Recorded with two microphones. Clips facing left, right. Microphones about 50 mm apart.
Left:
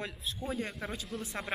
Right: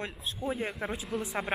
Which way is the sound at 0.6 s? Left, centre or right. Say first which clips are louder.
Right 3 dB; right.